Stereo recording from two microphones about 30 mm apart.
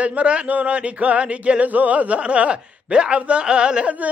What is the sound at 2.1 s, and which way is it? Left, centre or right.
Speech, right.